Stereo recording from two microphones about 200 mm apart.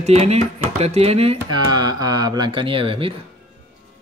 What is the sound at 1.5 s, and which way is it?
Speech, 20° right (ahead or behind).